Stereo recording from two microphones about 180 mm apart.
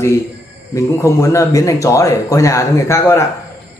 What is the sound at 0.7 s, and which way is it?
A man's voice, 15° left (ahead or behind).